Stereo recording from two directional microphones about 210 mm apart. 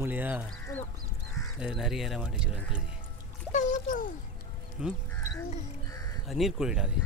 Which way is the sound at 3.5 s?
35° left (ahead or behind).